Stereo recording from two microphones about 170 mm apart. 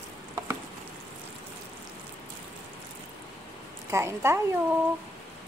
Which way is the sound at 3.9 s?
15° right (ahead or behind).